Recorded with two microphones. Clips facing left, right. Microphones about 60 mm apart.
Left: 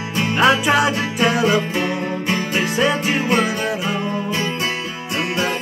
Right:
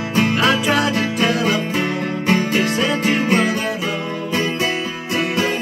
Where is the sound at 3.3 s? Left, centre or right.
Right.